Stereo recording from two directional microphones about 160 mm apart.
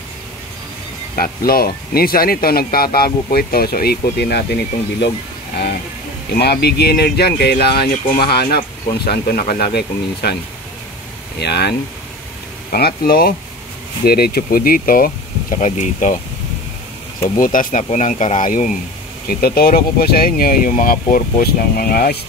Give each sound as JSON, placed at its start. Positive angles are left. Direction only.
{"t": 1.1, "sound": "speech", "side_deg": 65}
{"t": 6.3, "sound": "speech", "side_deg": 85}
{"t": 11.3, "sound": "speech", "side_deg": 90}
{"t": 12.7, "sound": "speech", "side_deg": 70}
{"t": 15.6, "sound": "speech", "side_deg": 50}
{"t": 17.4, "sound": "speech", "side_deg": 60}
{"t": 19.2, "sound": "speech", "side_deg": 70}